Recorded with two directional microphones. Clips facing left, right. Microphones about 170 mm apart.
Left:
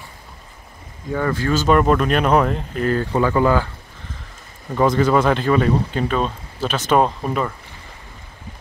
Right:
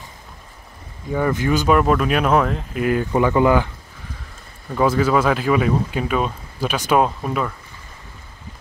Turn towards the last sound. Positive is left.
turn(degrees=0)  # may be behind; listen again after turning